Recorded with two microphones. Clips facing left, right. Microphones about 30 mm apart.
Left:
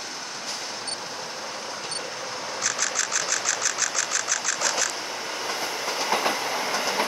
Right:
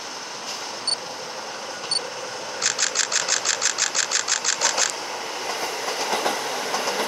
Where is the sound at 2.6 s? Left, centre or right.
Right.